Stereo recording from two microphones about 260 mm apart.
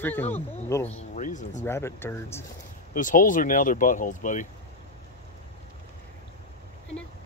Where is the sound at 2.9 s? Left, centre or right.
Left.